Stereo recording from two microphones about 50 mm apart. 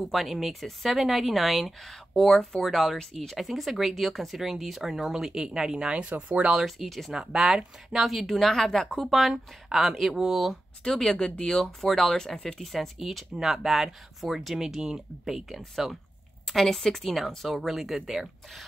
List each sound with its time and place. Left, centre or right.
0.0 s speech: centre
6.0 s speech: right
6.5 s speech: centre
10.8 s speech: centre
11.5 s speech: centre